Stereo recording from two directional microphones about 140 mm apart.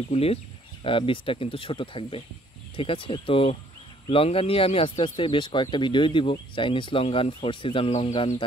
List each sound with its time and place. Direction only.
0.1 s speech: 45° left (ahead or behind)